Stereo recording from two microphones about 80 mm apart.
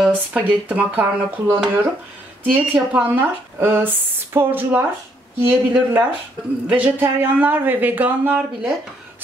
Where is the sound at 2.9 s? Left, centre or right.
Centre.